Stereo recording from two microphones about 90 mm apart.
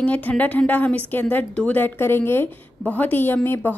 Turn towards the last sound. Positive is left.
turn(degrees=25)  # may be behind; listen again after turning